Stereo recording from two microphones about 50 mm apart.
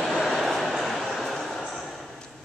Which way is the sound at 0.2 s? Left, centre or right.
Centre.